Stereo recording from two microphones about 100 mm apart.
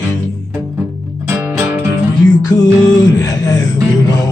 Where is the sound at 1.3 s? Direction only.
25° right (ahead or behind).